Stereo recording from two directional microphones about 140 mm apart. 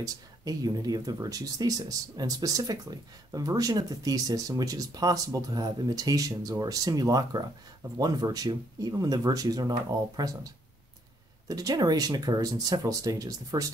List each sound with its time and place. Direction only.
0.0 s speech: 25° right (ahead or behind)